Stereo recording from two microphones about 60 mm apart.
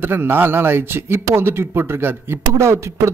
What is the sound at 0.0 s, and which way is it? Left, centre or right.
A man's voice, right.